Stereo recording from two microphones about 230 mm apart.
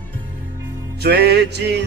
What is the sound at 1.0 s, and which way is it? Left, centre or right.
Music, right.